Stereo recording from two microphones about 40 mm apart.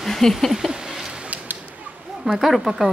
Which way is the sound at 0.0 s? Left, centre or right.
Centre.